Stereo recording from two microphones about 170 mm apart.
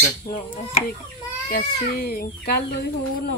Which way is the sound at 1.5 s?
65° left (ahead or behind).